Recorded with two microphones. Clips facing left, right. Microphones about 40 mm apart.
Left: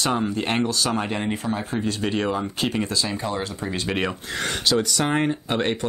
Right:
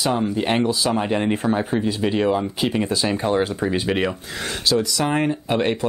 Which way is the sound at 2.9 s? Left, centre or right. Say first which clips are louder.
Right 6 dB; right.